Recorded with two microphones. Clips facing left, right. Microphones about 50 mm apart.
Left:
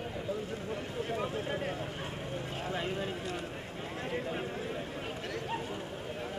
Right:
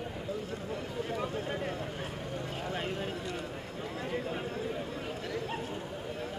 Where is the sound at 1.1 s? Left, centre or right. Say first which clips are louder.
Left 1 dB; centre.